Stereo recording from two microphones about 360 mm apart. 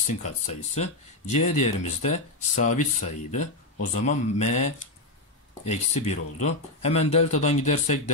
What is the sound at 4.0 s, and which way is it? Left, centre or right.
Speech, centre.